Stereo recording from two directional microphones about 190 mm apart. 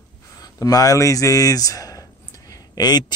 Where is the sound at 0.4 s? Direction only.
20° left (ahead or behind).